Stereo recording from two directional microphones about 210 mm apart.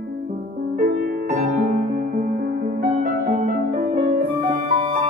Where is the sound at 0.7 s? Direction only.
45° right (ahead or behind).